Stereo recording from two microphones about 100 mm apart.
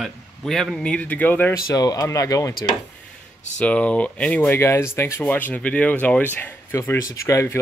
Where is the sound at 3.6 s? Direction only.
15° left (ahead or behind); by 7.6 s 30° left (ahead or behind).